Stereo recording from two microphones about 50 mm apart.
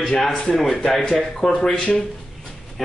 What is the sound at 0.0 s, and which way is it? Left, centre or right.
Speech, centre.